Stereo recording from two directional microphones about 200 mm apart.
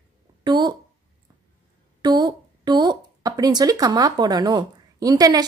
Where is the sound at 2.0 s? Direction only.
20° right (ahead or behind).